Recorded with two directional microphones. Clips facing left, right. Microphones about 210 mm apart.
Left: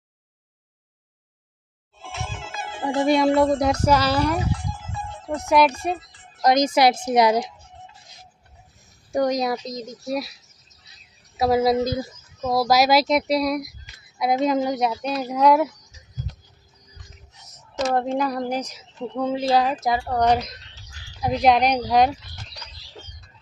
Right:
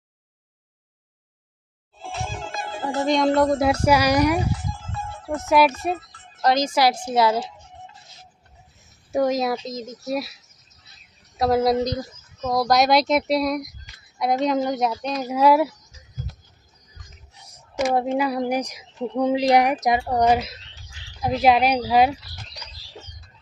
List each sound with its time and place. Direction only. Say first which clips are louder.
2.0 s music: right 3 dB; 35° right (ahead or behind)
3.0 s a child's voice: left 2 dB; 10° left (ahead or behind)
3.3 s a woman's voice: even; 5° right (ahead or behind)
4.7 s music: even; 10° left (ahead or behind)
5.8 s speech: right 1 dB; centre (ahead or behind)
6.4 s a woman's voice: left 2 dB; 15° left (ahead or behind)
9.1 s speech: right 1 dB; centre (ahead or behind)
11.3 s speech: even; centre (ahead or behind)
15.2 s speech: right 1 dB; 5° right (ahead or behind)
17.4 s a woman's voice: right 2 dB; 10° right (ahead or behind)